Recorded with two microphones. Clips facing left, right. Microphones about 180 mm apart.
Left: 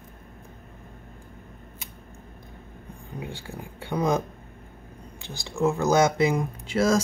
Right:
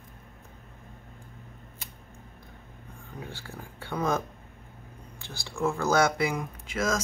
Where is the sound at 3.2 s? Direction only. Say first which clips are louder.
Left 4 dB; 15° left (ahead or behind).